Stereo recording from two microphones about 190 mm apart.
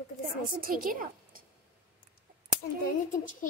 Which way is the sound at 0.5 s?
50° right (ahead or behind).